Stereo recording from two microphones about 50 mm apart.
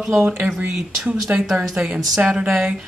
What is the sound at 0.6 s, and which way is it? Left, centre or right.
Speech, right.